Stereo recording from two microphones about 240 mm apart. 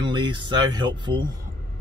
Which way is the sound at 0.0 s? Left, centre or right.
Centre.